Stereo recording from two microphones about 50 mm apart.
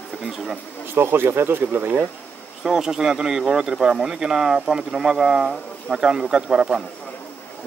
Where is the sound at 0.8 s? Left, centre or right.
Right.